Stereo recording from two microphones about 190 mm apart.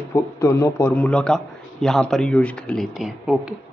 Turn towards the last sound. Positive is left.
turn(degrees=0)  # may be behind; listen again after turning